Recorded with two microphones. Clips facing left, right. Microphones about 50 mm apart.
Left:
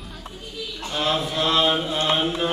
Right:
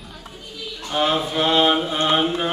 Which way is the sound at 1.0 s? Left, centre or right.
Right.